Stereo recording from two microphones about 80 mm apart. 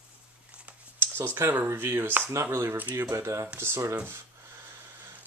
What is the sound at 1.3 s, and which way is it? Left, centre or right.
Speech, right.